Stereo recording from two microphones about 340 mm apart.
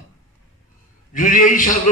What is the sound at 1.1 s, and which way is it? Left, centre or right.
Speech, left.